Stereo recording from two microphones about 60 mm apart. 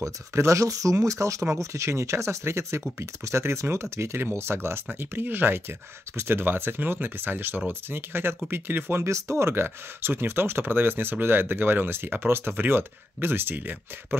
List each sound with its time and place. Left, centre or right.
0.0 s speech: right